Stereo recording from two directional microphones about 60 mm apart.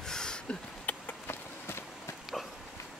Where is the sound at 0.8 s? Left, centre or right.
Left.